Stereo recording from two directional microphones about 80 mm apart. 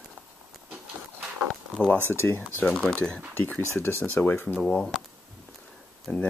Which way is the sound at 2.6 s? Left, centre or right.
Centre.